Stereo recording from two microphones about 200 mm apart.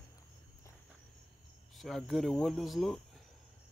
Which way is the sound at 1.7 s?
Centre (ahead or behind).